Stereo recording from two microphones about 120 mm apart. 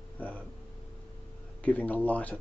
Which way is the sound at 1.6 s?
10° left (ahead or behind).